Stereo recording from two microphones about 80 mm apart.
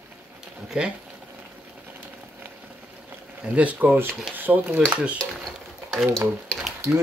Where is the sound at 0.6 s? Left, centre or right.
Centre.